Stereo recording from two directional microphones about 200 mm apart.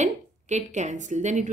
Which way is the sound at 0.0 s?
35° right (ahead or behind).